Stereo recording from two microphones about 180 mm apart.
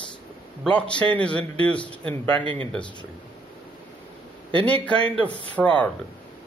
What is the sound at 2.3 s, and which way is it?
Speech, 30° right (ahead or behind).